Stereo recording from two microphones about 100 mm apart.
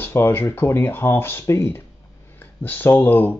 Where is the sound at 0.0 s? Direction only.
25° left (ahead or behind).